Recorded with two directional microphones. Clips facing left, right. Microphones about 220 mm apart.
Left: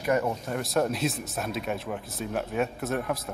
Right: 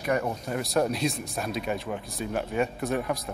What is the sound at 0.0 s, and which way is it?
Speech, centre (ahead or behind).